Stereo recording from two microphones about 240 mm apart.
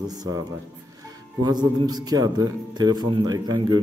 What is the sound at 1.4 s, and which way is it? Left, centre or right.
A man's voice, centre.